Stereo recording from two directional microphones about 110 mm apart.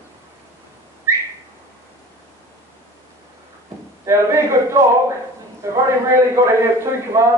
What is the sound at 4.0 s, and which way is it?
A man's voice, 25° right (ahead or behind).